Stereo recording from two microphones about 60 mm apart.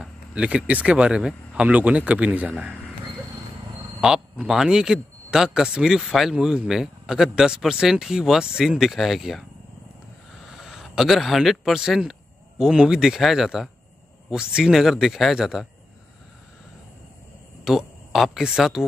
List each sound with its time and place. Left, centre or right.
0.3 s speech: centre
4.5 s speech: centre
10.5 s speech: centre
17.6 s speech: centre